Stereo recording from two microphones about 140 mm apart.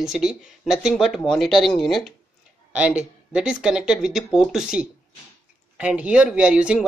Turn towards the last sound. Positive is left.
turn(degrees=-5)  # may be behind; listen again after turning